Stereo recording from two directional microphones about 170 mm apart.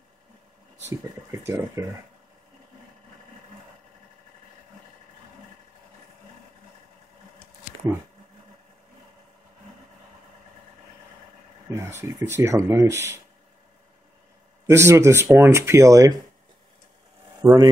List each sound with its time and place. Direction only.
0.8 s speech: 15° right (ahead or behind)
11.7 s speech: 15° right (ahead or behind)
14.7 s speech: 15° right (ahead or behind)
17.4 s speech: 20° right (ahead or behind)